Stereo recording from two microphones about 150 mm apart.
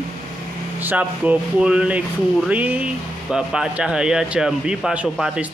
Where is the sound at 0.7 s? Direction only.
10° right (ahead or behind).